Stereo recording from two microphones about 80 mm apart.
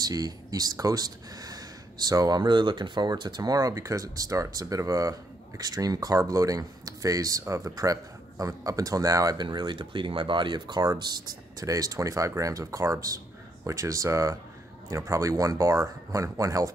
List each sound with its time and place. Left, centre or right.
0.0 s speech: right
9.4 s speech: right
10.8 s speech: right